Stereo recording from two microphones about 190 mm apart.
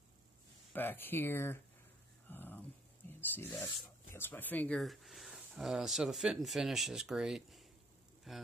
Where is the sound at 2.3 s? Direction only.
10° left (ahead or behind).